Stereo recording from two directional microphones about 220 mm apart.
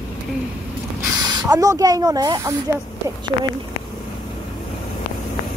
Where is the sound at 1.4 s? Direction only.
15° right (ahead or behind).